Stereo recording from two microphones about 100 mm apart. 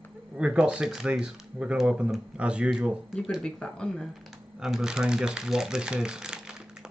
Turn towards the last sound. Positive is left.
turn(degrees=-5)  # may be behind; listen again after turning